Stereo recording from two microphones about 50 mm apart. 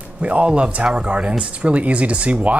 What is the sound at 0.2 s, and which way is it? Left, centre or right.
Speech, right.